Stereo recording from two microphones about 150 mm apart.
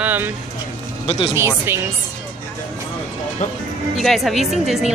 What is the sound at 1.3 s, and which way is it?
Speech, 15° right (ahead or behind).